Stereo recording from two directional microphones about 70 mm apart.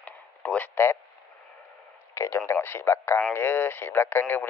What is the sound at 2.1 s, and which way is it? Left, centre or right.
Speech, left.